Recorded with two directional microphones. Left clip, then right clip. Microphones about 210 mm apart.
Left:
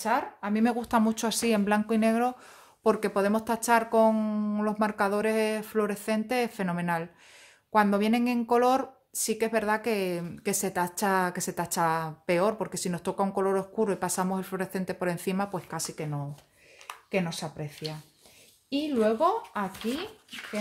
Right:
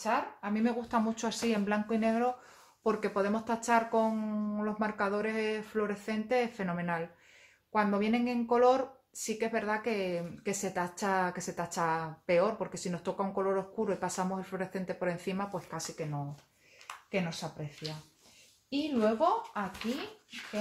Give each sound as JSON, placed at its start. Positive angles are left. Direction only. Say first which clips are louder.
{"t": 0.0, "sound": "speech", "louder": "left 4 dB", "side_deg": 50}
{"t": 17.1, "sound": "speech", "louder": "left 5 dB", "side_deg": 50}